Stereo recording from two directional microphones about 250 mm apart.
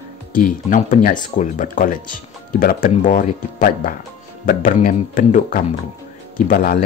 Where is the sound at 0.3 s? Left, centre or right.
Left.